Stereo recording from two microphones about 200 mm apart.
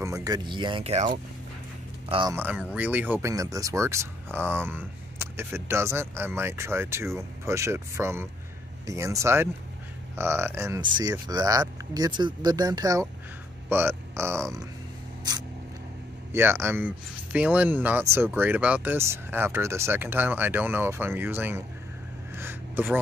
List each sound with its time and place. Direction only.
0.0 s speech: 15° right (ahead or behind)
2.3 s speech: 10° right (ahead or behind)
16.3 s speech: 10° right (ahead or behind)
22.3 s a sound: 10° right (ahead or behind)